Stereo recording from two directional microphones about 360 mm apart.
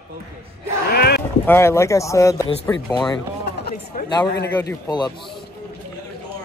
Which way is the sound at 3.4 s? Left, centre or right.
Left.